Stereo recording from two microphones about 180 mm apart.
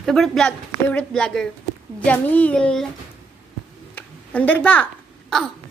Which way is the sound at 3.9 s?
10° left (ahead or behind).